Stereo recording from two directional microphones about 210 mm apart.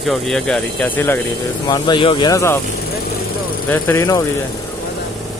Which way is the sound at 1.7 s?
20° left (ahead or behind).